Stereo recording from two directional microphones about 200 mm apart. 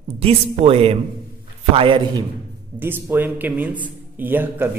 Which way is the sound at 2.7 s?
10° right (ahead or behind).